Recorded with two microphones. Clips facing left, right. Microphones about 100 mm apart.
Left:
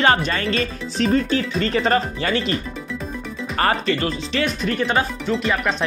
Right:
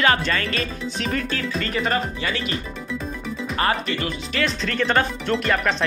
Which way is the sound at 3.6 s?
35° left (ahead or behind).